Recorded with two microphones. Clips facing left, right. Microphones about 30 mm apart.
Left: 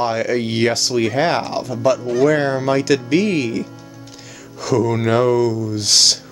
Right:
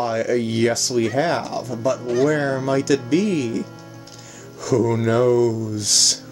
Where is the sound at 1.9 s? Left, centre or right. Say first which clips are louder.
Left 5 dB; left.